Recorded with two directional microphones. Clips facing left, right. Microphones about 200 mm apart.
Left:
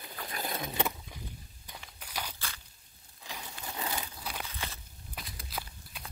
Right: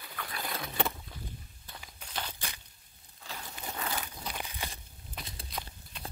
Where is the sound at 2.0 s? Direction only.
10° left (ahead or behind).